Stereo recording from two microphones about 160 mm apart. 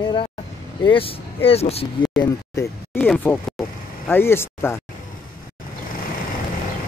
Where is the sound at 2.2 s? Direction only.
20° left (ahead or behind).